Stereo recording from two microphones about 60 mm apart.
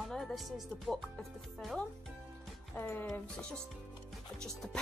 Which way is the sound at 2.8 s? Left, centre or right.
Left.